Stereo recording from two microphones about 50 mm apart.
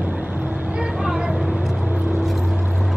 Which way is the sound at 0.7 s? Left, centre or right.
Right.